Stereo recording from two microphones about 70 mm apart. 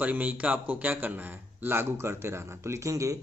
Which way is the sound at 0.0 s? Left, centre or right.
Right.